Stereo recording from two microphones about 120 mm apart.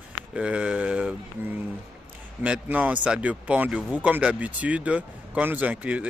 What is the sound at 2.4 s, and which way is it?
Speech, 10° right (ahead or behind).